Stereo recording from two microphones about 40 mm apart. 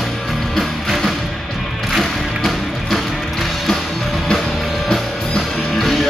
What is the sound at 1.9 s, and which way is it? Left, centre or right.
Music, centre.